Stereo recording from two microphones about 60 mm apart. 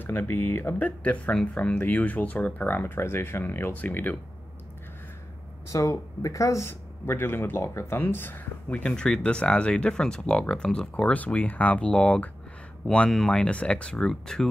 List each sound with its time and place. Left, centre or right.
0.0 s speech: left
5.7 s speech: left
6.7 s speech: left
8.0 s speech: left
8.8 s speech: centre